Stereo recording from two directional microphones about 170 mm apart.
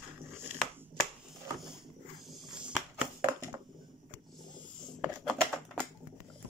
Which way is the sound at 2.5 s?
5° right (ahead or behind).